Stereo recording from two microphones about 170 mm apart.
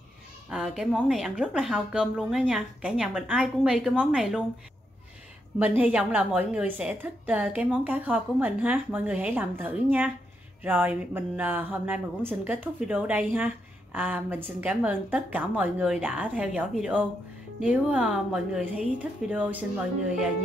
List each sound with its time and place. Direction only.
0.5 s speech: 5° right (ahead or behind)
5.6 s a woman's voice: 10° right (ahead or behind)